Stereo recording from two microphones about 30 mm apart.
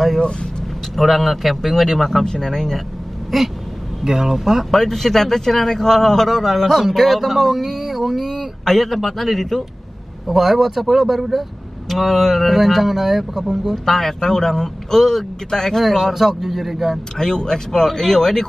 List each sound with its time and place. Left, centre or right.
0.2 s speech: left
0.9 s speech: centre
2.2 s speech: left
2.5 s speech: centre
3.3 s speech: centre
4.0 s speech: centre
4.6 s speech: centre
6.6 s speech: centre
8.6 s speech: centre
14.0 s speech: centre
16.1 s speech: centre
17.2 s speech: left